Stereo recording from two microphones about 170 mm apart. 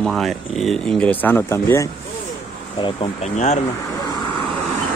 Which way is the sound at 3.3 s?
45° left (ahead or behind).